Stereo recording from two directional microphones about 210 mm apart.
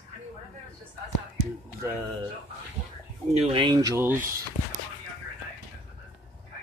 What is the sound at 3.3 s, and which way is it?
Speech, 30° right (ahead or behind).